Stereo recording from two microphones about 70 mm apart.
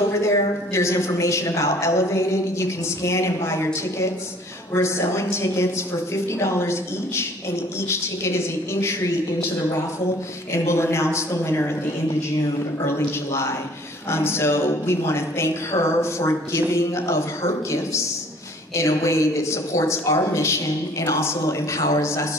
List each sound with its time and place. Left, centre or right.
0.1 s a man's voice: left
10.5 s speech: left
12.8 s a man's voice: left